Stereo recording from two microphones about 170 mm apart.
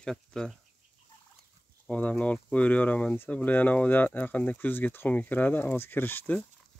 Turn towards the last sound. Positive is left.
turn(degrees=10)  # may be behind; listen again after turning